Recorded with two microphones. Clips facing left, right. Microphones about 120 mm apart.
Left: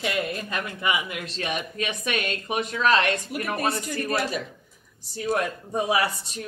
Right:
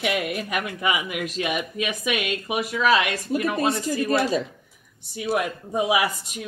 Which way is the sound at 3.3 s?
25° right (ahead or behind).